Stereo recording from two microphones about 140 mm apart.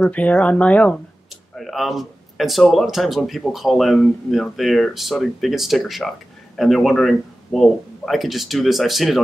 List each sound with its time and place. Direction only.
0.0 s speech: 10° left (ahead or behind)